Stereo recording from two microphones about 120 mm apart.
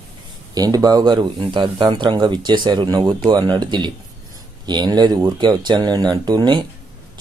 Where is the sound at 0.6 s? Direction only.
30° right (ahead or behind).